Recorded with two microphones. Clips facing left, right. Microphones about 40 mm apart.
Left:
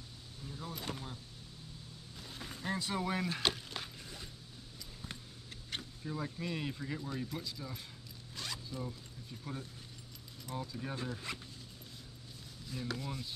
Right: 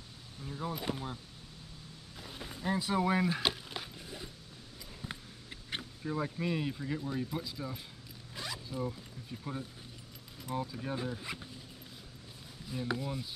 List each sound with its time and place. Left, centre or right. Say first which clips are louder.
0.5 s speech: right 6 dB; right
2.1 s a sound: right 2 dB; centre
5.0 s a sound: right 5 dB; centre
6.6 s speech: right 4 dB; centre
8.4 s zipper: right 4 dB; centre
10.4 s speech: right 4 dB; centre
12.6 s speech: right 5 dB; centre